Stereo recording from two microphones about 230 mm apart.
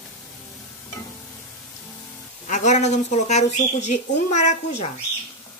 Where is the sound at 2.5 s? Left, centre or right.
Left.